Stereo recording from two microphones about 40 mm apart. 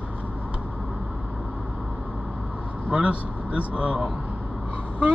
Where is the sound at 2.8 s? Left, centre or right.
Right.